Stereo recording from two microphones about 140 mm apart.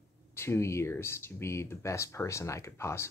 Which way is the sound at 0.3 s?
20° left (ahead or behind).